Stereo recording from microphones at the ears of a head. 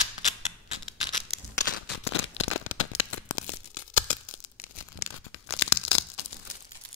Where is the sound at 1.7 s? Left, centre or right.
Left.